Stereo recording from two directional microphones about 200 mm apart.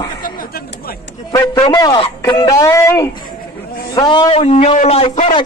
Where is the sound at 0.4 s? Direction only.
50° left (ahead or behind).